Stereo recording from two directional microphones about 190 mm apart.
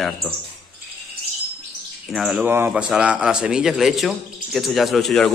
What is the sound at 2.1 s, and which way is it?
A man's voice, 5° right (ahead or behind).